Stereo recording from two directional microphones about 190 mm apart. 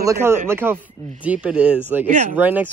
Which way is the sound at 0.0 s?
15° right (ahead or behind).